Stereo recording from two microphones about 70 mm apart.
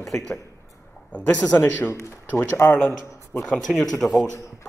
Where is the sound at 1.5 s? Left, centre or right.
Left.